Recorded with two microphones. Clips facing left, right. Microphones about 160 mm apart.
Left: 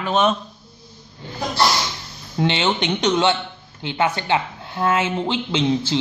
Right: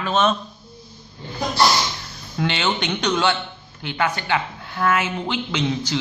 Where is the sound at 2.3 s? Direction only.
25° left (ahead or behind).